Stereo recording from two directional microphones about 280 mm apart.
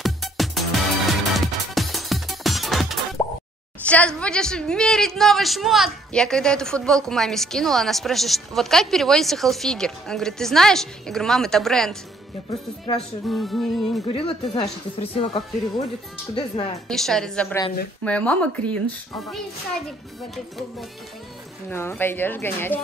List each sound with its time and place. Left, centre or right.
0.0 s music: centre
3.2 s plop: centre
3.8 s a woman's voice: centre
12.4 s speech: centre
13.3 s a woman's voice: centre
14.1 s speech: centre
16.8 s a woman's voice: centre
21.6 s speech: centre